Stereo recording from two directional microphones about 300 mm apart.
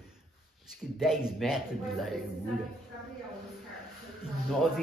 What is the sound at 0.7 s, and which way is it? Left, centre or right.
Speech, centre.